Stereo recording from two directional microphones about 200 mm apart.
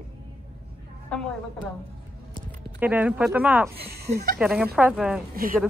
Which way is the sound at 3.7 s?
50° right (ahead or behind).